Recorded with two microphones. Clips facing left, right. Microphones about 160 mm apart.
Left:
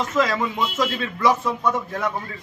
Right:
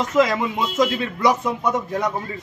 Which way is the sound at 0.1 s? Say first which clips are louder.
Right 5 dB; 15° right (ahead or behind).